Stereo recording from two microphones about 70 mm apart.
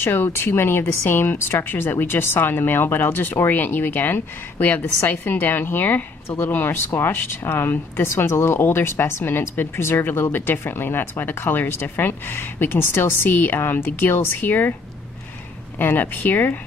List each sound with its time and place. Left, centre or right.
0.0 s speech: left
15.8 s speech: left